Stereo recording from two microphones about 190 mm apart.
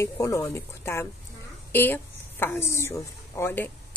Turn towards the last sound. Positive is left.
turn(degrees=10)  # may be behind; listen again after turning